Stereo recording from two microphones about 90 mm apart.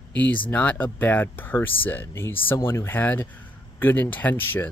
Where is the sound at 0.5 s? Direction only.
20° left (ahead or behind).